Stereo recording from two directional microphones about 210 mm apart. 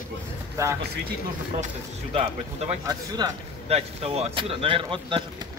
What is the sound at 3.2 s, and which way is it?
Speech, 15° right (ahead or behind).